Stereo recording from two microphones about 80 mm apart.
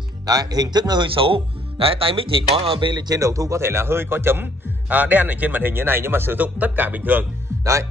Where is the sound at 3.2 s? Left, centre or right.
Right.